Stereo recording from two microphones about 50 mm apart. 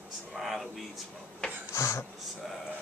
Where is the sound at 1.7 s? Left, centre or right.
Left.